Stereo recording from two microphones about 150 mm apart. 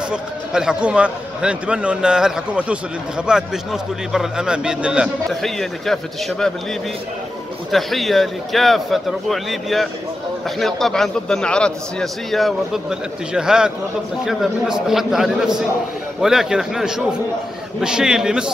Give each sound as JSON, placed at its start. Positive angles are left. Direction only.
{"t": 0.1, "sound": "a man's voice", "side_deg": -5}
{"t": 7.7, "sound": "a man's voice", "side_deg": 0}